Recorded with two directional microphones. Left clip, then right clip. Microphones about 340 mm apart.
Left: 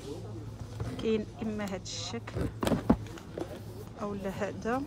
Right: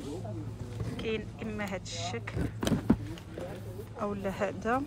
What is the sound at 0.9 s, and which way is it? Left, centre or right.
Speech, centre.